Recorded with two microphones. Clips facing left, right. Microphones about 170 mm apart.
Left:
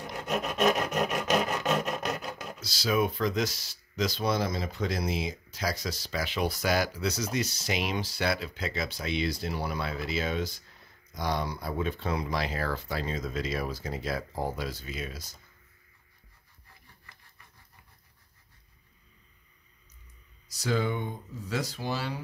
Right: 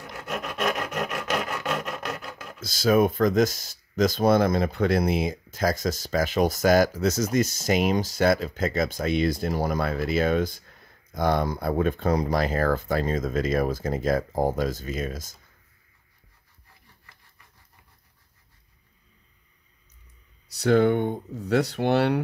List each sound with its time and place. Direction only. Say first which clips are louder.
0.0 s rub: left 2 dB; 20° left (ahead or behind)
2.6 s speech: right 7 dB; 50° right (ahead or behind)
20.4 s speech: right 10 dB; 60° right (ahead or behind)